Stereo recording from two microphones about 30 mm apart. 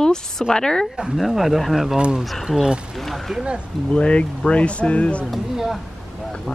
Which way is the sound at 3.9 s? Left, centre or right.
Left.